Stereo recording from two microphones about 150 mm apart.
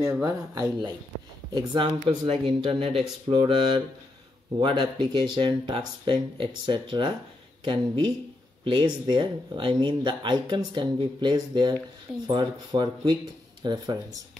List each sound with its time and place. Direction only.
0.0 s speech: 25° right (ahead or behind)